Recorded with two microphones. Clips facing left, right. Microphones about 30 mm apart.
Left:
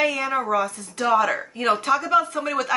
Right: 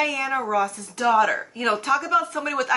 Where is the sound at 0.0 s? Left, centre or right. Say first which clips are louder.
Left 1 dB; centre.